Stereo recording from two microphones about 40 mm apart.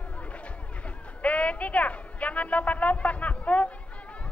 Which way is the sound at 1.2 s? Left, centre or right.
Left.